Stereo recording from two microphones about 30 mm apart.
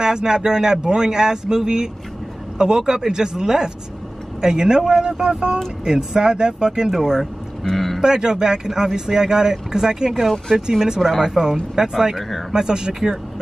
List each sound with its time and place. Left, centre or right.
0.0 s speech: right
6.9 s speech: centre
7.6 s a sound: centre
8.0 s speech: right
12.5 s speech: right